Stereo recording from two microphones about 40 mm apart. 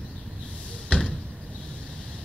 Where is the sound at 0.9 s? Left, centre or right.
Left.